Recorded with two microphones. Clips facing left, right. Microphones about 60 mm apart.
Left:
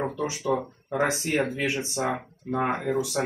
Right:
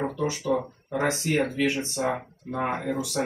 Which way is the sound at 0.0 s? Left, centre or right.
Centre.